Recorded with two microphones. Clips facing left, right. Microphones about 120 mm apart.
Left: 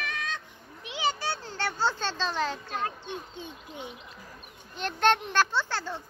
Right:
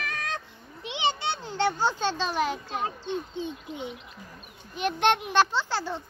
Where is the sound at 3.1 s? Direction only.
20° right (ahead or behind).